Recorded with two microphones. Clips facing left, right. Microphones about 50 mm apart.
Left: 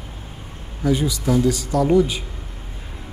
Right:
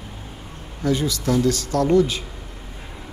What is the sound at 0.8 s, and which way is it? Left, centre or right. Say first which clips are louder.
Speech: left 1 dB; centre.